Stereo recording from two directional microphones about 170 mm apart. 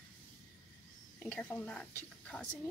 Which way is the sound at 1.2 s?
10° left (ahead or behind).